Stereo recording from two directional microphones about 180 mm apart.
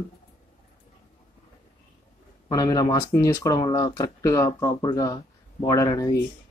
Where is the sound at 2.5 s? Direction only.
20° left (ahead or behind).